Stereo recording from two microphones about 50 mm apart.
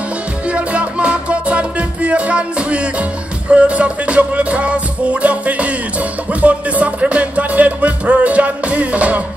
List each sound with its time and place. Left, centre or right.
0.5 s music: right